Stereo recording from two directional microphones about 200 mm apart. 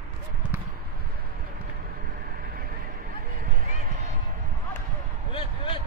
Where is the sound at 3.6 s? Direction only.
40° right (ahead or behind).